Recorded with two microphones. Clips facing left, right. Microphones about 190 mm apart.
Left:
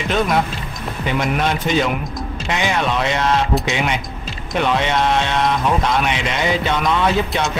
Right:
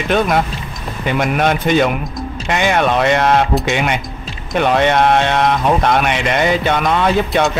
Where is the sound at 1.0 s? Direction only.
55° right (ahead or behind).